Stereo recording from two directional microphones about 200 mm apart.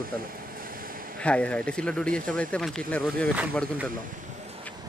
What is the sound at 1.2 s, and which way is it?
Speech, 5° left (ahead or behind).